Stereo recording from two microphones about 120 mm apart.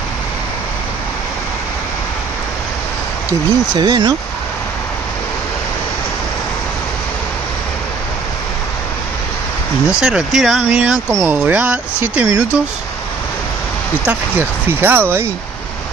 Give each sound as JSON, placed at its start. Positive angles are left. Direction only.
{"t": 3.3, "sound": "speech", "side_deg": -35}
{"t": 9.9, "sound": "speech", "side_deg": -5}
{"t": 11.1, "sound": "speech", "side_deg": -20}
{"t": 14.0, "sound": "speech", "side_deg": -15}